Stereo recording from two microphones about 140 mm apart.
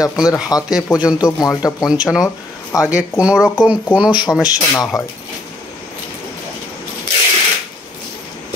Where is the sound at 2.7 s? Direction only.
20° left (ahead or behind).